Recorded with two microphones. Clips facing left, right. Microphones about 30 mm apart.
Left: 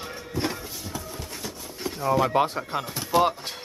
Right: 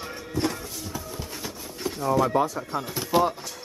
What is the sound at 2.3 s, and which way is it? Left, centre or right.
Speech, left.